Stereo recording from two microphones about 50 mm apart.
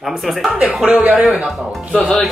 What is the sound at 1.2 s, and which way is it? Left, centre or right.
Speech, centre.